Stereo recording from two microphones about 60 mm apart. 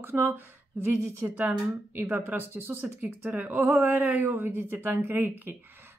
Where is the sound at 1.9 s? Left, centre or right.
Right.